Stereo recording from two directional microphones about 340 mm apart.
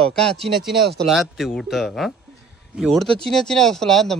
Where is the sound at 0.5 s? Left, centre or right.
Centre.